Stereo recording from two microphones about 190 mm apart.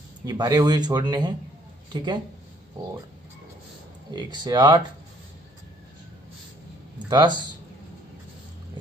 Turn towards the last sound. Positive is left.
turn(degrees=-25)  # may be behind; listen again after turning